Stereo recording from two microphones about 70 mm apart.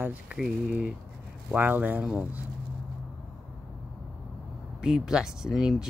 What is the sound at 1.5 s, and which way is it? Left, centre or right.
Speech, right.